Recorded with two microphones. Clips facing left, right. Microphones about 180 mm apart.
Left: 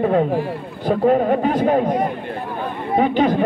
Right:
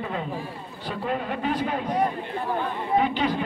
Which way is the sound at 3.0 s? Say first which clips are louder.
Left 12 dB; 50° left (ahead or behind).